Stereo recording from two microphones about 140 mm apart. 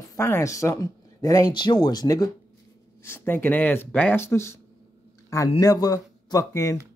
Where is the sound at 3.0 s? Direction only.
15° left (ahead or behind).